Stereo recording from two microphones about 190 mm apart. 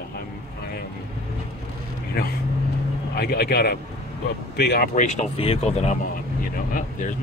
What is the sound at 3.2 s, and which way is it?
A man's voice, 55° left (ahead or behind).